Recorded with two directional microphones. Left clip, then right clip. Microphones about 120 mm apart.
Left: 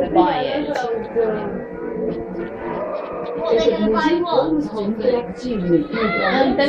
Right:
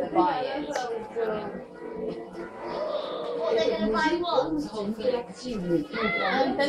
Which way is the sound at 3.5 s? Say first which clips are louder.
Left 9 dB; 10° left (ahead or behind).